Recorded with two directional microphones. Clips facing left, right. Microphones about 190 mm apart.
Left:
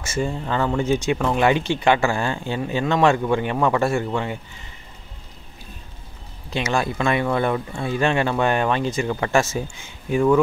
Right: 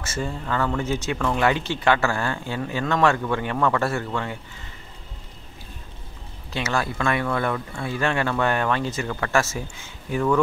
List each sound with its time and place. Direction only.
0.0 s speech: 15° left (ahead or behind)
6.5 s speech: 15° left (ahead or behind)